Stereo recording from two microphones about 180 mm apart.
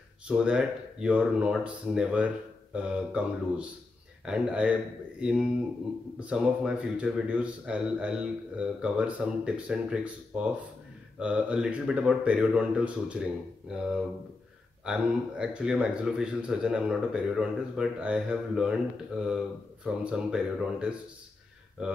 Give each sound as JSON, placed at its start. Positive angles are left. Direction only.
{"t": 0.3, "sound": "a man's voice", "side_deg": -5}